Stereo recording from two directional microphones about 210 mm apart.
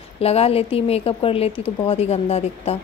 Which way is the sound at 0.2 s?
30° left (ahead or behind).